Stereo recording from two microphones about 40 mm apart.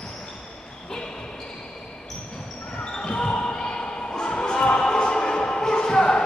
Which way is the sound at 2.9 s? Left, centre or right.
Left.